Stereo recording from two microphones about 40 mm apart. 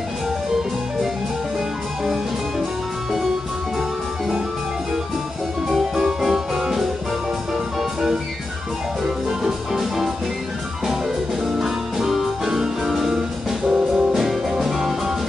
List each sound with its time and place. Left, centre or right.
5.7 s music: centre
9.0 s music: centre
11.4 s music: centre
13.7 s music: right
14.1 s music: centre